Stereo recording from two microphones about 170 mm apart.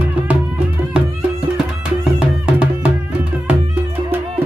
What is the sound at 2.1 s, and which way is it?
Music, 5° right (ahead or behind).